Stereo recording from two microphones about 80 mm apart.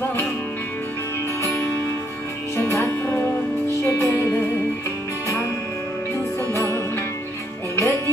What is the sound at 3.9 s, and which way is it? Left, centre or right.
Music, left.